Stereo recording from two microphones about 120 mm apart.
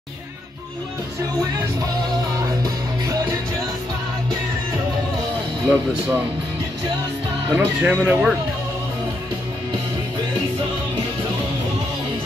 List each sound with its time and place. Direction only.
2.4 s music: 30° right (ahead or behind)
5.7 s speech: 10° right (ahead or behind)
7.5 s speech: 15° right (ahead or behind)